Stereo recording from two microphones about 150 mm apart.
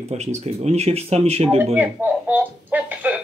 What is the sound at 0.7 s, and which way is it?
Speech, 45° right (ahead or behind).